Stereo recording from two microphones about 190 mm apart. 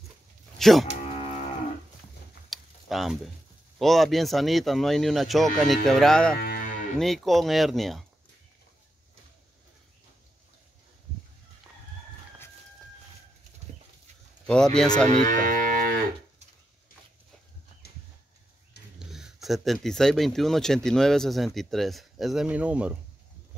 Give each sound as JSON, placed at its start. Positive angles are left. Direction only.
{"t": 0.6, "sound": "speech", "side_deg": 0}
{"t": 1.1, "sound": "livestock", "side_deg": 30}
{"t": 2.5, "sound": "a sound", "side_deg": 0}
{"t": 3.7, "sound": "speech", "side_deg": 0}
{"t": 14.4, "sound": "speech", "side_deg": 5}
{"t": 15.0, "sound": "moo", "side_deg": -40}
{"t": 18.9, "sound": "speech", "side_deg": 0}